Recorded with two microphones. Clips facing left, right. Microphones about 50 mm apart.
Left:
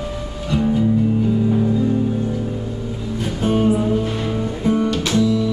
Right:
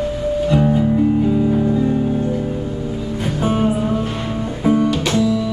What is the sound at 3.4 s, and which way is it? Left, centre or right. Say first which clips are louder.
Music: left 1 dB; centre.